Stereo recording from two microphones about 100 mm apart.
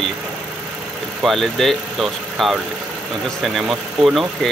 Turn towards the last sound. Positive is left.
turn(degrees=0)  # may be behind; listen again after turning